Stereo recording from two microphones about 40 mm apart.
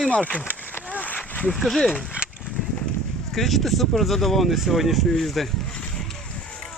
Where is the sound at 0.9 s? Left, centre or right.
Left.